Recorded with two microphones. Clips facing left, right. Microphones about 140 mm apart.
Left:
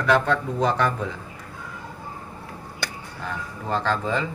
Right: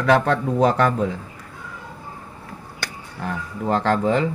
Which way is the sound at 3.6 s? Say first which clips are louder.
Right 5 dB; 60° right (ahead or behind).